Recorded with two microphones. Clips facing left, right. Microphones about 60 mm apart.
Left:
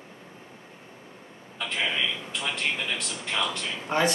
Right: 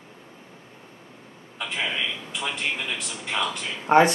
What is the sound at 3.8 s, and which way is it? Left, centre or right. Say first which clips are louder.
Speech: right 8 dB; right.